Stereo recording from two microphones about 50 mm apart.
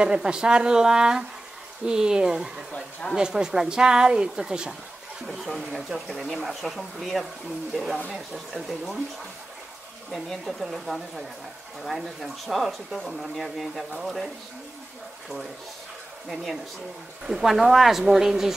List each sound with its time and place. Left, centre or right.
0.0 s speech: centre
2.7 s speech: centre
3.2 s speech: centre
5.2 s speech: centre
10.1 s speech: centre
16.3 s speech: centre